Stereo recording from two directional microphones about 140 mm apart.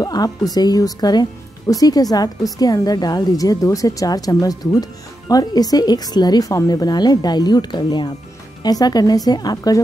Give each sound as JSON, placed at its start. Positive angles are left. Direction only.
{"t": 0.0, "sound": "a woman's voice", "side_deg": 25}